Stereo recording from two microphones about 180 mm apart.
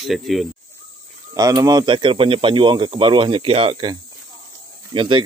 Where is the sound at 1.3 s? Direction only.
20° right (ahead or behind).